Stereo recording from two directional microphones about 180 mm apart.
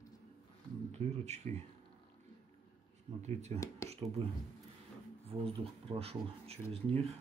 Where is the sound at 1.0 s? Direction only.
40° right (ahead or behind).